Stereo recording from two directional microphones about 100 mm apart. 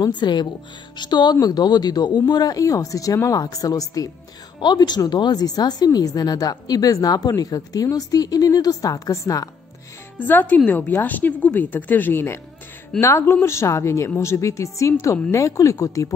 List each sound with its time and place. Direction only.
0.0 s a woman's voice: 50° left (ahead or behind)
4.6 s a woman's voice: 45° left (ahead or behind)
10.1 s a woman's voice: 20° left (ahead or behind); by 16.1 s 35° left (ahead or behind)